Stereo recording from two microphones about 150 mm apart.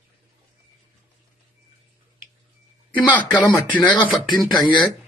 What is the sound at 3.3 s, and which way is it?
Speech, 25° left (ahead or behind).